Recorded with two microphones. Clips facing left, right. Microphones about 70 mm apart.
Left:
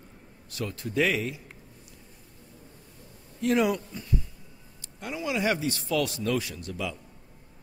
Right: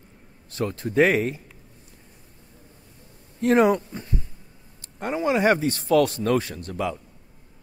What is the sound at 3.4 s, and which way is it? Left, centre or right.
Speech, right.